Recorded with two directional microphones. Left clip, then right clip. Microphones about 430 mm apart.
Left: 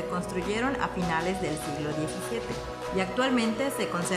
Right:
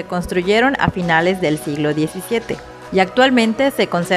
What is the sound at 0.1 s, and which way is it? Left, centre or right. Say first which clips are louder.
Speech: right 18 dB; centre.